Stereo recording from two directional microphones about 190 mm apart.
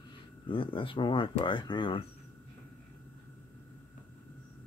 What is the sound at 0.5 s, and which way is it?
Speech, 25° left (ahead or behind).